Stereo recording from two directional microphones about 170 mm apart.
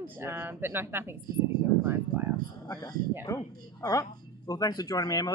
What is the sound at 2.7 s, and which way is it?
Speech, 25° left (ahead or behind).